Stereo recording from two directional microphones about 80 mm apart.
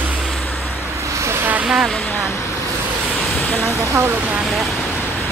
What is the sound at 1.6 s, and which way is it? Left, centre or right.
Speech, centre.